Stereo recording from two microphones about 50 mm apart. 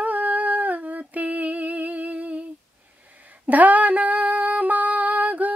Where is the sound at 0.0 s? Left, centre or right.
Right.